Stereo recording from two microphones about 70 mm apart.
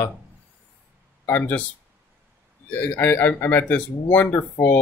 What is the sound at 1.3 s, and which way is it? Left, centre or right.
Speech, left.